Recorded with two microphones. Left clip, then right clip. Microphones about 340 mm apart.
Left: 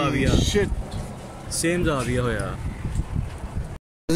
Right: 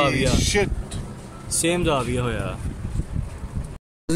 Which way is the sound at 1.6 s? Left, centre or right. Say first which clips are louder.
Right 2 dB; centre.